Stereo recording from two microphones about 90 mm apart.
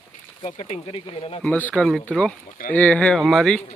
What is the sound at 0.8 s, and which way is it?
Speech, 85° left.